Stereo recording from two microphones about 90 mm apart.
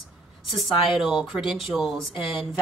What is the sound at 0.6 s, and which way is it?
A woman's voice, centre (ahead or behind).